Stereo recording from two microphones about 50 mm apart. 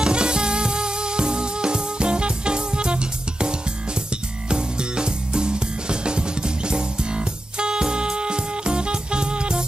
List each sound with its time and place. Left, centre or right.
0.0 s music: centre